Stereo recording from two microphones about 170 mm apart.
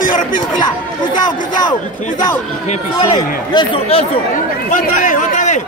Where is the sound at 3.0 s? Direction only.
25° left (ahead or behind).